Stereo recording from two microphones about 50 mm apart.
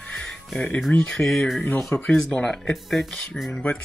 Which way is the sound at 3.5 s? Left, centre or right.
Left.